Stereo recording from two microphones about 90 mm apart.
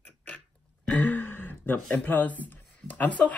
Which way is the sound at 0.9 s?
20° left (ahead or behind).